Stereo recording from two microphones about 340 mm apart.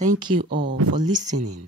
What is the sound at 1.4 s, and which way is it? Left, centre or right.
Speech, right.